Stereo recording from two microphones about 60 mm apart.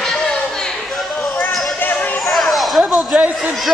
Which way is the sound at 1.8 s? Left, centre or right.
Left.